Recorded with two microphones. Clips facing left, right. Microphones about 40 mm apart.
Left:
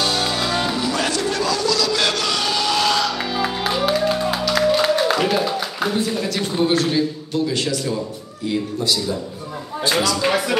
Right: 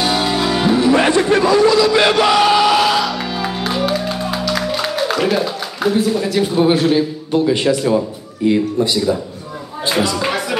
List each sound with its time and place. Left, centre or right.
0.0 s music: centre
0.7 s crowd: right
8.5 s speech: right